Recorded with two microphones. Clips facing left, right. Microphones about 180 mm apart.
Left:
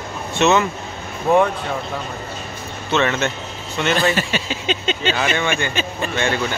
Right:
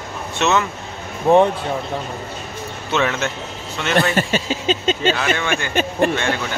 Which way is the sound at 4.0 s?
45° right (ahead or behind).